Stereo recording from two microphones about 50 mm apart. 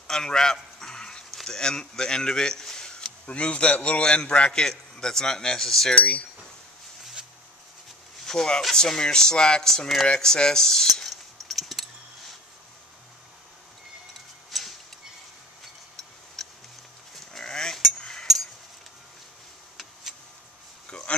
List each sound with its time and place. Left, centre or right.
0.0 s dog: centre
3.3 s a man's voice: left
5.9 s speech: left
8.3 s a man's voice: centre
10.0 s cutlery: centre
14.5 s a sound: centre
16.4 s tick-tock: centre
17.1 s livestock: centre
17.9 s a sound: centre